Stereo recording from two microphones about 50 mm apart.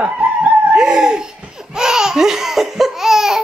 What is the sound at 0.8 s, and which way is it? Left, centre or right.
Laughter, centre.